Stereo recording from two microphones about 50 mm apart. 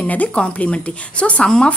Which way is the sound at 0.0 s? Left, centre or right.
Left.